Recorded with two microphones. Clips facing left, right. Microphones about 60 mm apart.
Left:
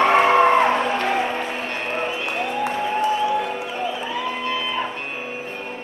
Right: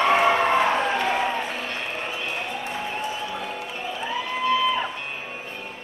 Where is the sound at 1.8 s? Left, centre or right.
Left.